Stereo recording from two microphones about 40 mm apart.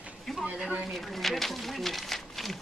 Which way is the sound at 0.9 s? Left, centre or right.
Centre.